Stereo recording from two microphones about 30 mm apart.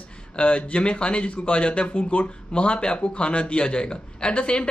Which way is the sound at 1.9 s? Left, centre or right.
Left.